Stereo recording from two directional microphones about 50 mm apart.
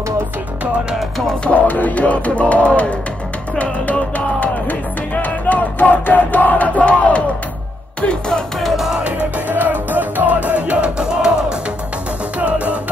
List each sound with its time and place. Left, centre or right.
1.5 s music: left
8.5 s music: centre
9.0 s music: right
12.4 s music: right